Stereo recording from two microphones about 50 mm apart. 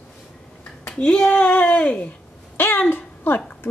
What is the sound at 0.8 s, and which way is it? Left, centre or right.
A woman's voice, left.